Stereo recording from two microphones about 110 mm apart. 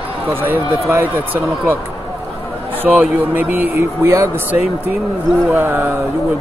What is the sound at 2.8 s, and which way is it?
A man's voice, 15° right (ahead or behind).